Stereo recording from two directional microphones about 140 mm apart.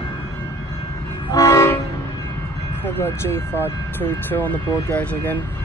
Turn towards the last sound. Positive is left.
turn(degrees=15)  # may be behind; listen again after turning